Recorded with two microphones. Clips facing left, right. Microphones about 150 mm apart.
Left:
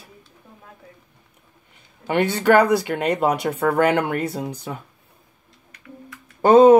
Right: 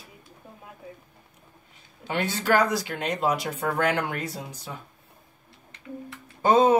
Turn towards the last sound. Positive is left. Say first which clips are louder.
# left 8 dB
turn(degrees=60)  # may be behind; listen again after turning